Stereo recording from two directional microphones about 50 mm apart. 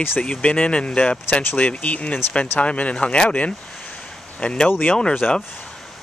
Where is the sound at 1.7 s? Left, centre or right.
Left.